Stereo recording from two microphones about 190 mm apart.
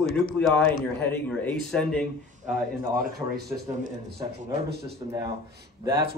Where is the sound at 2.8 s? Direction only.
50° right (ahead or behind).